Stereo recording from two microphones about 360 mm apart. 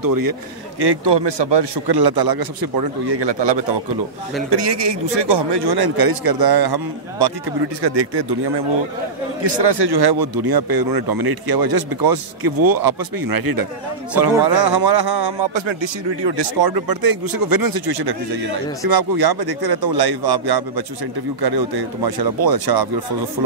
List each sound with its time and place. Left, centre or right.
0.0 s a man's voice: right
4.5 s a man's voice: right
14.4 s a man's voice: right